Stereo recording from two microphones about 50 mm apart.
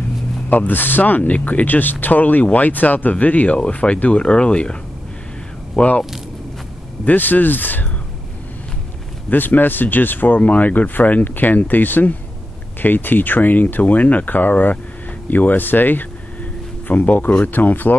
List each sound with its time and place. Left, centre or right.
0.5 s speech: left
5.8 s speech: left
7.1 s speech: left
9.3 s speech: left